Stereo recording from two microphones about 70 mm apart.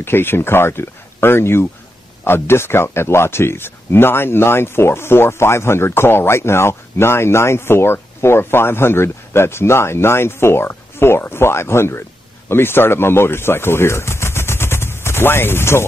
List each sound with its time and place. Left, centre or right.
0.0 s speech: left